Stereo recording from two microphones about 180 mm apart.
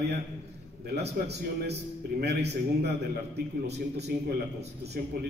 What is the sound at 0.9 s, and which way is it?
A man's voice, 65° right (ahead or behind).